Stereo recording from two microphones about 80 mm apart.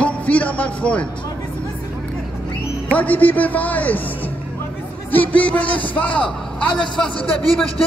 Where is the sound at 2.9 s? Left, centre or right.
Left.